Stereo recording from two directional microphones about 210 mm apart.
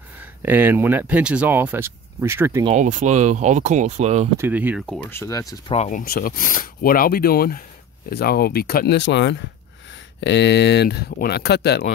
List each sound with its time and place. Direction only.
0.2 s speech: 10° right (ahead or behind)
2.6 s speech: 35° right (ahead or behind)
4.4 s speech: 10° right (ahead or behind)
4.8 s speech: 5° left (ahead or behind)
5.8 s speech: 40° left (ahead or behind)